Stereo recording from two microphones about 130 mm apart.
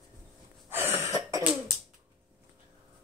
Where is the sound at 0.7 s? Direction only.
15° right (ahead or behind).